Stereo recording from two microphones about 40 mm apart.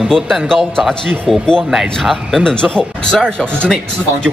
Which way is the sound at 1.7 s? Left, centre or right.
Centre.